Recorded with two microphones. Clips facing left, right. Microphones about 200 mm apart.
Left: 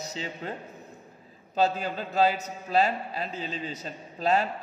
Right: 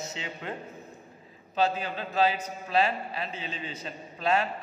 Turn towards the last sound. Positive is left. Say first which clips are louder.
# left 2 dB
turn(degrees=40)  # may be behind; listen again after turning